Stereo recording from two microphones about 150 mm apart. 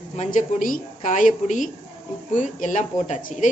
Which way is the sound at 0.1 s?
55° left (ahead or behind).